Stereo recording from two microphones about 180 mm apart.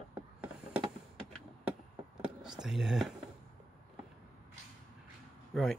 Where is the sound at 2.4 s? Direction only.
5° right (ahead or behind).